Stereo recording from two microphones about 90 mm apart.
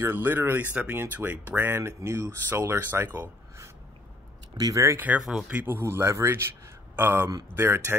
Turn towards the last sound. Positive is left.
turn(degrees=-25)  # may be behind; listen again after turning